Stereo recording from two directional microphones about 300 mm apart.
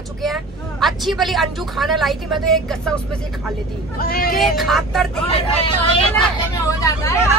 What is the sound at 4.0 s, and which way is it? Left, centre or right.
Speech, left.